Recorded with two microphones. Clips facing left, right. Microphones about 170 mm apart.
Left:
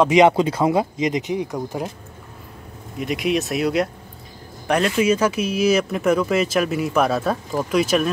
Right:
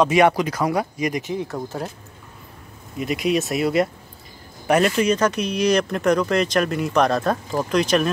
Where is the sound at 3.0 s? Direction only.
Centre (ahead or behind).